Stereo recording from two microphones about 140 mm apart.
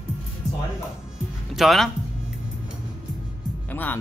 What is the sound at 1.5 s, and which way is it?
Speech, centre (ahead or behind).